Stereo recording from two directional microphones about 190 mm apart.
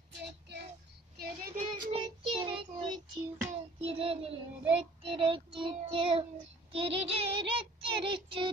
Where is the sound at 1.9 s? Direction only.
25° right (ahead or behind).